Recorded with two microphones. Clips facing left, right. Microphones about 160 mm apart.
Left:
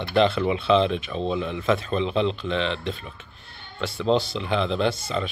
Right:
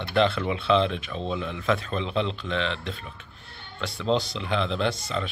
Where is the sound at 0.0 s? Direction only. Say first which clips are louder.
Left 3 dB; centre (ahead or behind).